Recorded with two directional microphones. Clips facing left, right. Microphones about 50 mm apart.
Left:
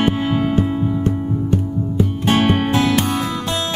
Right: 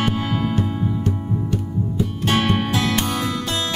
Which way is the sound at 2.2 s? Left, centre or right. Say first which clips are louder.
Left 3 dB; left.